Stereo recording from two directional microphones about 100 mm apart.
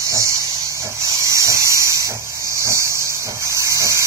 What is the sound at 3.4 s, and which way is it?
Steam, 30° right (ahead or behind).